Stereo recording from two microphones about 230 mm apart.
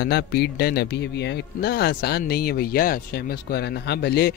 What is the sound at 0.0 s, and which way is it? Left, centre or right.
Speech, left.